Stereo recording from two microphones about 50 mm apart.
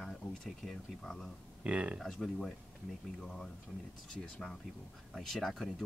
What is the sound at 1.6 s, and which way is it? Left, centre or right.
Speech, right.